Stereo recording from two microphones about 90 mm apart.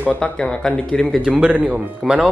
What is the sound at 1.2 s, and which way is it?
Speech, 10° right (ahead or behind).